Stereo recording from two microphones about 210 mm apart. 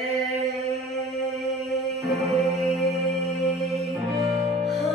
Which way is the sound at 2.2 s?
Centre (ahead or behind).